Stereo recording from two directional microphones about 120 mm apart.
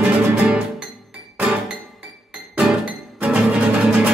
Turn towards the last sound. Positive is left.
turn(degrees=-10)  # may be behind; listen again after turning